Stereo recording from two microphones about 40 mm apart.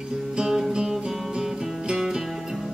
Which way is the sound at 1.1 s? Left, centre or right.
Centre.